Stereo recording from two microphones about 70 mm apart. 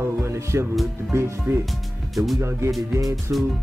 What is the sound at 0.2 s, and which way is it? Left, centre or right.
Music, right.